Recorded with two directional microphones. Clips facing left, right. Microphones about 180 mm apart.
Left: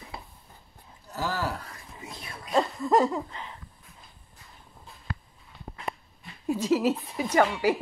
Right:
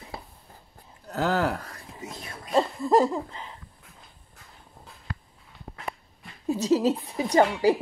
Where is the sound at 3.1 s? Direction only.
10° right (ahead or behind).